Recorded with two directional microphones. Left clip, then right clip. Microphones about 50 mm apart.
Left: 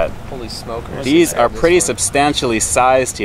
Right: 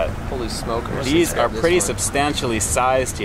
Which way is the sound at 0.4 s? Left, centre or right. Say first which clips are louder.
Right 1 dB; centre.